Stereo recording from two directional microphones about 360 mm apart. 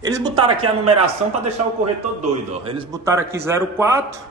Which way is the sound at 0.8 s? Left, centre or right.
Centre.